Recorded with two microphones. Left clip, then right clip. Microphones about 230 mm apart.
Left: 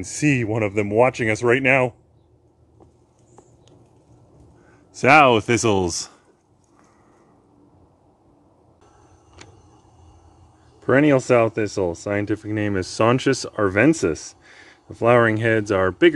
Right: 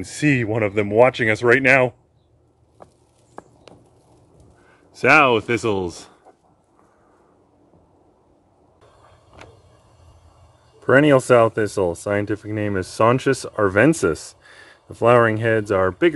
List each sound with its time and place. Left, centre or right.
0.0 s speech: centre
4.9 s speech: left
10.8 s speech: centre